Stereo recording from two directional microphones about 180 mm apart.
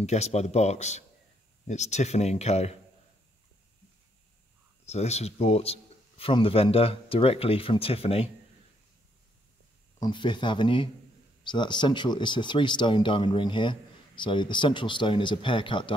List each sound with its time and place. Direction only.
0.0 s speech: 40° left (ahead or behind)
4.8 s speech: 35° left (ahead or behind)
9.9 s speech: 25° left (ahead or behind)